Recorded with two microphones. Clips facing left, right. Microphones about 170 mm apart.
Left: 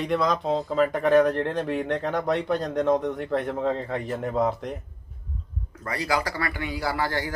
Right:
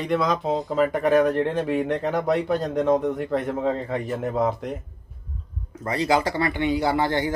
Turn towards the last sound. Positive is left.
turn(degrees=-20)  # may be behind; listen again after turning